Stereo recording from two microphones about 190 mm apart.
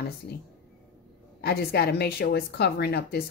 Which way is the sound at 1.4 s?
55° left (ahead or behind).